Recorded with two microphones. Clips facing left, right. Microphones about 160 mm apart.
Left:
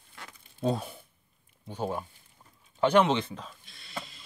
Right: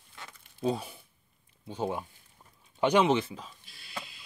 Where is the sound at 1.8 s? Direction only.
15° right (ahead or behind).